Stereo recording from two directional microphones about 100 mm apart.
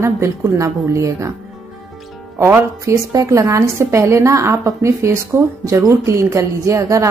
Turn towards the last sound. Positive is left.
turn(degrees=-30)  # may be behind; listen again after turning